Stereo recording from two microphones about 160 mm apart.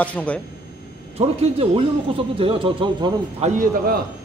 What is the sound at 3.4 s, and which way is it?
Speech, 55° right (ahead or behind).